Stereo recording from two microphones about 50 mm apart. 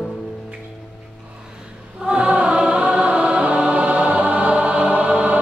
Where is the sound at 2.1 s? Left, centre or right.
Right.